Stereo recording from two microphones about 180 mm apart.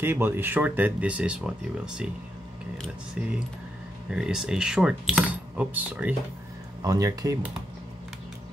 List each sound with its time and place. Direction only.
0.0 s speech: 10° right (ahead or behind)
3.2 s keys jangling: 5° right (ahead or behind)
6.8 s speech: 20° right (ahead or behind)